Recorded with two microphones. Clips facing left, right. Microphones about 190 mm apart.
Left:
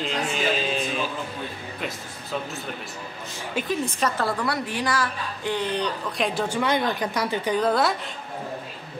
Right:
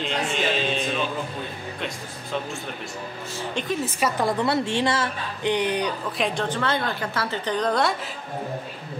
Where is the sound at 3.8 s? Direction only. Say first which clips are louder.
Right 2 dB; 10° right (ahead or behind).